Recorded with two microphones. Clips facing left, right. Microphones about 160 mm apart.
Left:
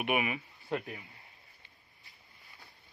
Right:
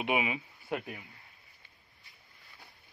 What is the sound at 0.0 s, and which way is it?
Speech, 15° right (ahead or behind).